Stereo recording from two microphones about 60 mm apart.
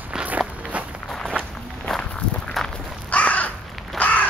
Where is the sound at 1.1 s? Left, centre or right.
Centre.